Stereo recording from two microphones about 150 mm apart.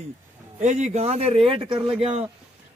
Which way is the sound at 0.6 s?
50° right (ahead or behind).